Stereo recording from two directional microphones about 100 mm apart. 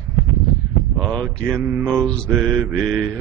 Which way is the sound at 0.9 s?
5° left (ahead or behind).